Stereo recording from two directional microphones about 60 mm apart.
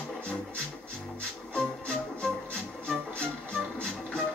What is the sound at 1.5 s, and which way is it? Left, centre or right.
Music, centre.